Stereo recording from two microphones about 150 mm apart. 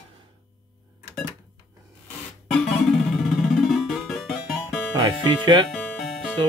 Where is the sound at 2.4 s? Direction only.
Centre (ahead or behind).